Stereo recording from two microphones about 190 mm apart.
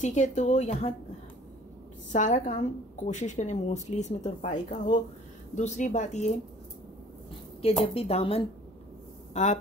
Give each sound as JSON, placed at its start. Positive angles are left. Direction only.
{"t": 0.0, "sound": "speech", "side_deg": 40}
{"t": 2.1, "sound": "speech", "side_deg": 40}
{"t": 7.8, "sound": "speech", "side_deg": 30}